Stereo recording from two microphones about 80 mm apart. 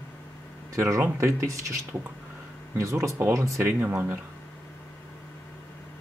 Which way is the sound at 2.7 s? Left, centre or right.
Right.